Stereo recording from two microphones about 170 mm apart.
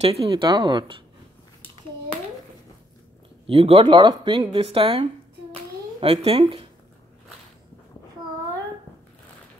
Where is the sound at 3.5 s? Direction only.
35° right (ahead or behind).